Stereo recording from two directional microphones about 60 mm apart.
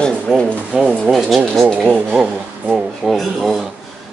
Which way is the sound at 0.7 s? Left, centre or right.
Centre.